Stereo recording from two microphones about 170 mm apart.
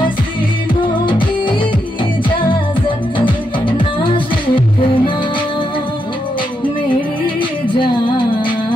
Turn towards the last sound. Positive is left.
turn(degrees=30)  # may be behind; listen again after turning